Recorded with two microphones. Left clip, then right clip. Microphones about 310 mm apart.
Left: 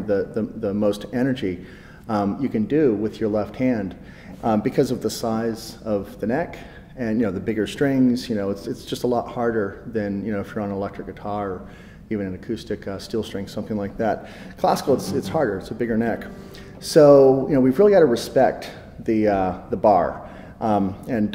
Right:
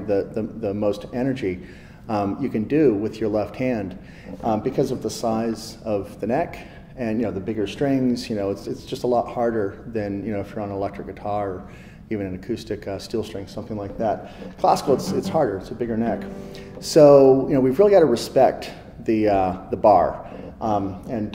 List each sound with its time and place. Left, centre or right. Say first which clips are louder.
0.0 s speech: even; left
4.5 s speech: left 2 dB; left
7.9 s speech: left 2 dB; left
14.6 s speech: right 1 dB; left
15.8 s speech: left 1 dB; left
16.8 s speech: even; left
20.6 s speech: left 2 dB; left